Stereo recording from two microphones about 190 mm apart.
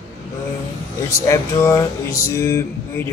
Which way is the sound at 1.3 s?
15° left (ahead or behind).